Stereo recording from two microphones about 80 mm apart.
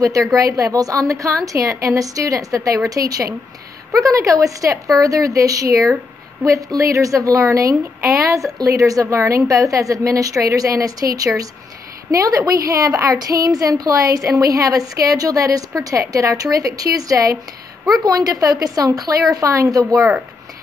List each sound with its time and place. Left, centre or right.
0.4 s a woman's voice: right